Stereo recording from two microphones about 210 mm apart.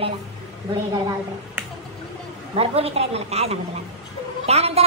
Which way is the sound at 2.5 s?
30° right (ahead or behind).